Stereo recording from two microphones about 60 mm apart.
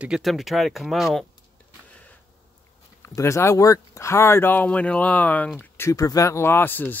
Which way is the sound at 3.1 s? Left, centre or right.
Left.